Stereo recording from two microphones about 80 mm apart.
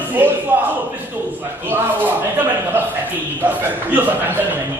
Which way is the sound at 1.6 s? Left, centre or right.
Right.